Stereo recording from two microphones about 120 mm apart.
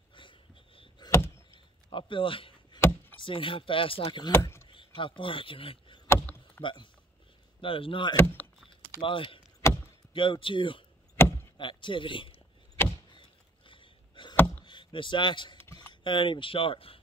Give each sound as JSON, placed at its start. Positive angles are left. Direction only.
{"t": 0.1, "sound": "a sound", "side_deg": 45}
{"t": 3.2, "sound": "speech", "side_deg": 45}
{"t": 4.3, "sound": "speech", "side_deg": 20}
{"t": 4.6, "sound": "speech", "side_deg": 45}
{"t": 6.0, "sound": "rowboat", "side_deg": 15}
{"t": 6.6, "sound": "speech", "side_deg": 40}
{"t": 9.6, "sound": "chop", "side_deg": 25}
{"t": 10.1, "sound": "speech", "side_deg": 45}
{"t": 11.1, "sound": "vehicle", "side_deg": 20}
{"t": 11.5, "sound": "speech", "side_deg": 45}
{"t": 13.1, "sound": "a sound", "side_deg": 45}
{"t": 15.9, "sound": "speech", "side_deg": 45}